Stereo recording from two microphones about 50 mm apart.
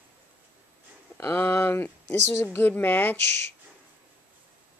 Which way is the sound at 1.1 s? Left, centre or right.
Left.